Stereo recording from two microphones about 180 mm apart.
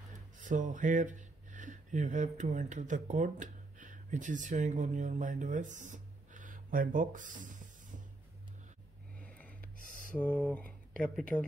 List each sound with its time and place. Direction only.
0.4 s speech: 45° right (ahead or behind)
9.2 s a sound: 10° left (ahead or behind)
10.1 s speech: 5° left (ahead or behind)